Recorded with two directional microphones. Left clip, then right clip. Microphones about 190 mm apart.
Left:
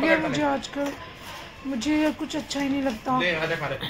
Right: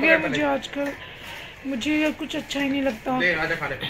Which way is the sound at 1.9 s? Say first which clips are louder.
Even; 10° right (ahead or behind).